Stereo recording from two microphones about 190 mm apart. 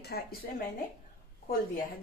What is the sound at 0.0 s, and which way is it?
Speech, 55° left (ahead or behind).